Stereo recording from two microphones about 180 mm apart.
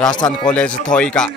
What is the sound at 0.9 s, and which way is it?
Speech, 5° left (ahead or behind).